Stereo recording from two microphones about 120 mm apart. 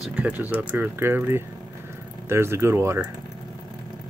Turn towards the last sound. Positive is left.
turn(degrees=-20)  # may be behind; listen again after turning